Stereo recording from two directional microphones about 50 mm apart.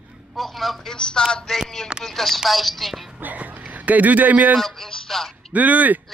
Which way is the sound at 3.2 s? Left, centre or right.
Right.